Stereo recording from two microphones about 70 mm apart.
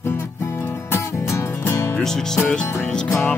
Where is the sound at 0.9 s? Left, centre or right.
Left.